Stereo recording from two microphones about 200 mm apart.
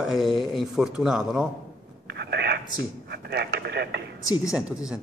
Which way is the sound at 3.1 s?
55° right (ahead or behind).